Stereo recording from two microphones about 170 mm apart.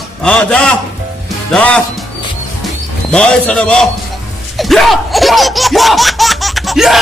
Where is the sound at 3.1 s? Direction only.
5° left (ahead or behind).